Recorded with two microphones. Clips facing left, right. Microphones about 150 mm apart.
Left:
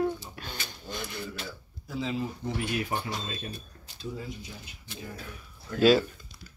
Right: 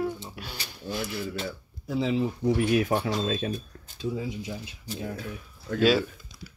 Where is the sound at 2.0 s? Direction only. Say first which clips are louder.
Right 6 dB; 80° right.